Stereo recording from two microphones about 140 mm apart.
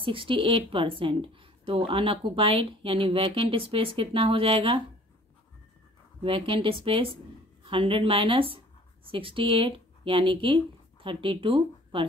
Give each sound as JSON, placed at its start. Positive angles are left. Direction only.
{"t": 0.0, "sound": "speech", "side_deg": -40}
{"t": 6.2, "sound": "speech", "side_deg": -40}